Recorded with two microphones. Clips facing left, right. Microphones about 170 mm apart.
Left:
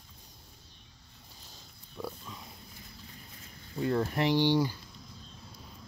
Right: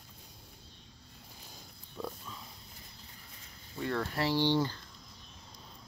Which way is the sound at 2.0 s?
Centre (ahead or behind).